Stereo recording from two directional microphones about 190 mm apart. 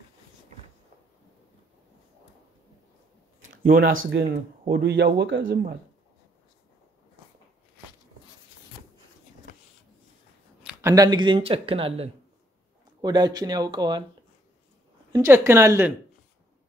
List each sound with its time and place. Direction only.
3.4 s a sound: 45° right (ahead or behind)
3.8 s speech: 85° right
4.2 s speech: 55° right (ahead or behind); by 5.6 s 70° right (ahead or behind)
10.6 s speech: 10° right (ahead or behind)
15.1 s speech: 15° right (ahead or behind)